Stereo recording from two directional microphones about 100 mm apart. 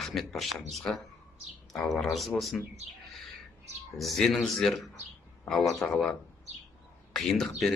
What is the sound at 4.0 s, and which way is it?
A man's voice, centre (ahead or behind).